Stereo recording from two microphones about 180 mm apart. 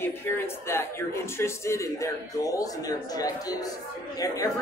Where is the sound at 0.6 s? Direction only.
15° left (ahead or behind).